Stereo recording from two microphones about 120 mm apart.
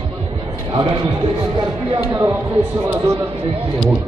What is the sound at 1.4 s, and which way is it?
Speech, 40° right (ahead or behind).